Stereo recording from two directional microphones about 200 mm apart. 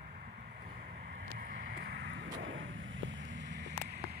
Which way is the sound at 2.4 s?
75° right (ahead or behind).